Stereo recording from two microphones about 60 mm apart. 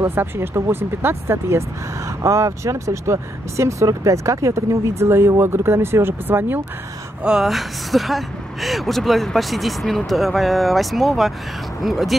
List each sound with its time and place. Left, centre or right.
0.0 s speech: right
2.2 s speech: right
7.2 s speech: centre